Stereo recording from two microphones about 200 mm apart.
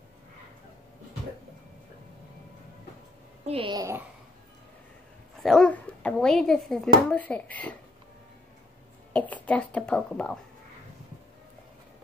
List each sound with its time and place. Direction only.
3.4 s a woman's voice: 25° right (ahead or behind)
5.4 s speech: centre (ahead or behind)
9.1 s speech: 5° left (ahead or behind)